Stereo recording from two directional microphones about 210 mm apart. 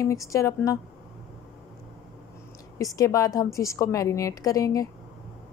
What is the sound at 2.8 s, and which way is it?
Speech, 15° left (ahead or behind).